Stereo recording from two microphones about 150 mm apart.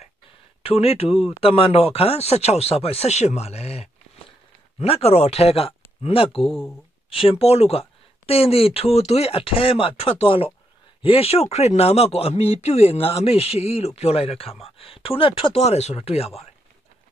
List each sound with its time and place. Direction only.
0.6 s speech: 40° left (ahead or behind)
6.3 s speech: centre (ahead or behind)
7.1 s speech: 40° left (ahead or behind)